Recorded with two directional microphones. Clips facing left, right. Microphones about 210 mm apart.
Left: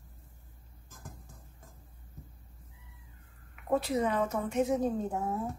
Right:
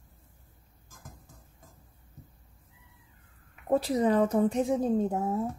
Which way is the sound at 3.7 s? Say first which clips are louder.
Right 4 dB; 35° right (ahead or behind).